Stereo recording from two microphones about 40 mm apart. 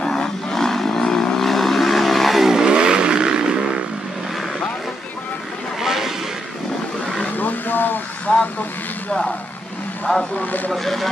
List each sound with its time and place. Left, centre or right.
0.0 s vehicle: centre
2.5 s vehicle: centre
5.8 s vehicle: centre
7.3 s a sound: left
8.3 s speech: left
10.1 s speech: centre
10.4 s speech: left
10.7 s speech: centre